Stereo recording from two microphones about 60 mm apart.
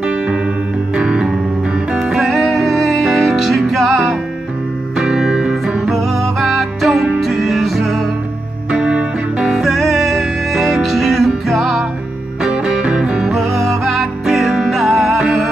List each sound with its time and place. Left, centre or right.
0.0 s music: centre
8.7 s music: centre
9.5 s music: centre
12.4 s music: centre